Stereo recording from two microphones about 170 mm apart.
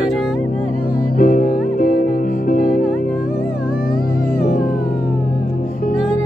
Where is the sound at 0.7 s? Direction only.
60° left (ahead or behind).